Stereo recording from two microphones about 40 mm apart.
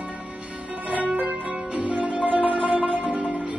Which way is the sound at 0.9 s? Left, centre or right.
Right.